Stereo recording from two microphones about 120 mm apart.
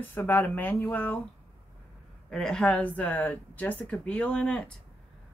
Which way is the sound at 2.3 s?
5° left (ahead or behind).